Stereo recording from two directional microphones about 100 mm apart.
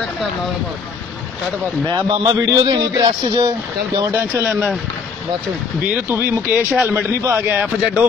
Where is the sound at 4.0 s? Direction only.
30° right (ahead or behind).